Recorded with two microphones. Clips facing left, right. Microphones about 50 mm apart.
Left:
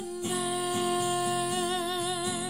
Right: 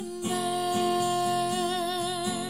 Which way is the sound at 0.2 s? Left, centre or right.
Centre.